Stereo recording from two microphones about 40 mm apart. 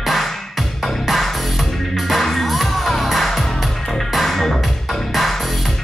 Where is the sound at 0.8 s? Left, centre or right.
Centre.